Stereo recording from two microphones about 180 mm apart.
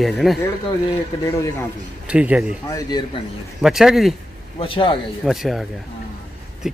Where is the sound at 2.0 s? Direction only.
5° right (ahead or behind).